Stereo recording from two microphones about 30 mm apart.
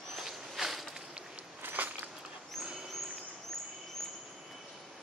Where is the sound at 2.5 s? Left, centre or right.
Centre.